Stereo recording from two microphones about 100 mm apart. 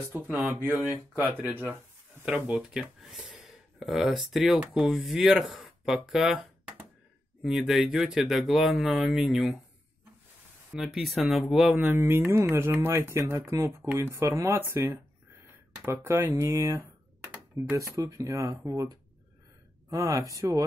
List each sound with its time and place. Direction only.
0.1 s speech: 20° right (ahead or behind); by 6.4 s 5° right (ahead or behind)
7.4 s speech: 5° right (ahead or behind)
10.7 s speech: centre (ahead or behind)
11.8 s speech: 20° right (ahead or behind)
15.8 s speech: 25° right (ahead or behind)